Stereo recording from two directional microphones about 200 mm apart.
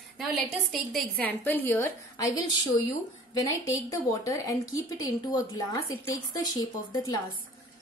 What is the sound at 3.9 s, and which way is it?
A woman's voice, 15° left (ahead or behind).